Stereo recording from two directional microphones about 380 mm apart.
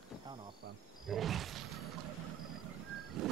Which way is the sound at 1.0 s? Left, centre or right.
Centre.